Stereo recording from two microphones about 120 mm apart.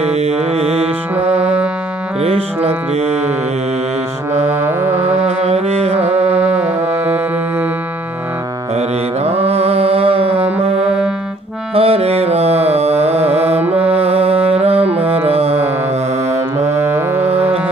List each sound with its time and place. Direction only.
0.0 s mantra: 60° right (ahead or behind)
1.1 s music: 15° right (ahead or behind)
2.2 s music: 60° right (ahead or behind)
4.5 s music: 20° right (ahead or behind)
5.2 s music: 65° right (ahead or behind)
6.1 s music: 15° right (ahead or behind)
8.7 s mantra: 60° right (ahead or behind)
11.7 s music: 55° right (ahead or behind)
16.7 s music: 20° right (ahead or behind)